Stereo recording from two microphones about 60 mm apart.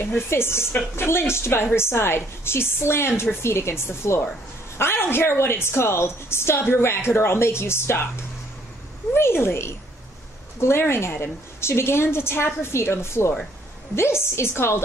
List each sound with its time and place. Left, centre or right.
0.3 s a woman's voice: left
9.1 s a woman's voice: left